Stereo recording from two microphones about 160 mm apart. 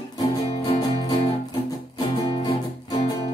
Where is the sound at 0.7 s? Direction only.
30° left (ahead or behind).